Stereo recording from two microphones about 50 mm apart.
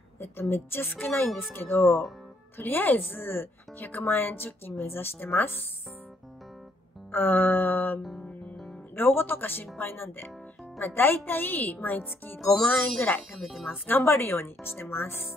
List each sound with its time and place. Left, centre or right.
0.2 s speech: left
7.1 s music: left
8.0 s music: centre
8.9 s speech: left
12.4 s speech: centre
13.5 s a woman's voice: centre
13.8 s speech: left